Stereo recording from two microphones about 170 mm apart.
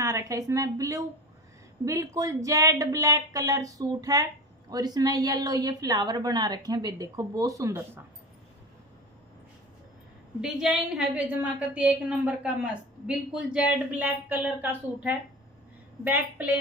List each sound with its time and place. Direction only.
0.0 s speech: 20° right (ahead or behind)
10.4 s a woman's voice: 5° right (ahead or behind)